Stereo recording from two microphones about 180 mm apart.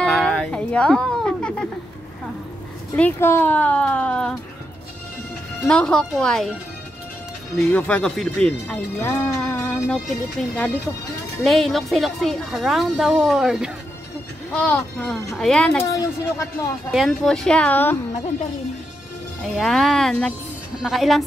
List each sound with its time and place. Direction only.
0.0 s music: 5° left (ahead or behind)
3.0 s speech: 10° left (ahead or behind)
5.7 s speech: 5° left (ahead or behind)
7.5 s speech: 5° left (ahead or behind)
15.9 s speech: 20° left (ahead or behind)
16.9 s speech: centre (ahead or behind)
19.4 s speech: centre (ahead or behind)